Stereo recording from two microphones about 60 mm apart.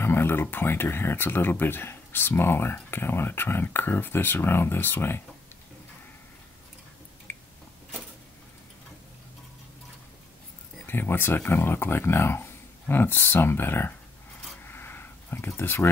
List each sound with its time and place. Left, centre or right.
0.0 s speech: left
7.3 s squish: left
10.9 s speech: left
14.6 s a sound: left